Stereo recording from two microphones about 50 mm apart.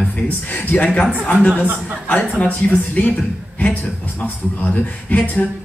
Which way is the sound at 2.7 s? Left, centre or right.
Left.